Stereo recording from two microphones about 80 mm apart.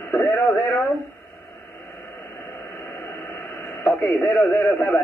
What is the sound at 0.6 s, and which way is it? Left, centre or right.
Speech, left.